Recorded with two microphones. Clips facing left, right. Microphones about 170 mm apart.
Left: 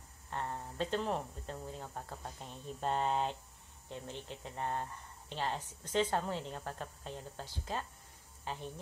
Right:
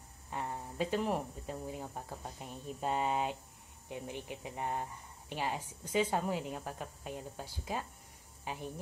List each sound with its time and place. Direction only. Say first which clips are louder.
0.3 s speech: even; 10° right (ahead or behind)